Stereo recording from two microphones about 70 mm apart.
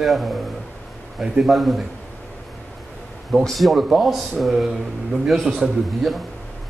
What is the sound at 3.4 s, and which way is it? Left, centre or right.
A man's voice, centre.